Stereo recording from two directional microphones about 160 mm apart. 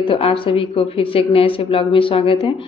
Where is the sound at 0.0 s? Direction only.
35° left (ahead or behind).